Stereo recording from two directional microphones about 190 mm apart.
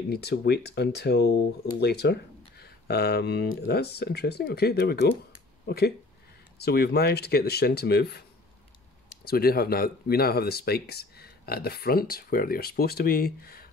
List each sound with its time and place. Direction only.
0.1 s speech: 60° left (ahead or behind)
9.2 s speech: 55° left (ahead or behind)